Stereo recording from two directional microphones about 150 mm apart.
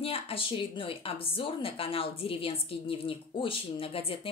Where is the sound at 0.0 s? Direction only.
40° left (ahead or behind).